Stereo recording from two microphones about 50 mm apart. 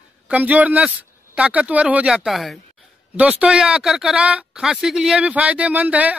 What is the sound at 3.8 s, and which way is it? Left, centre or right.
Speech, centre.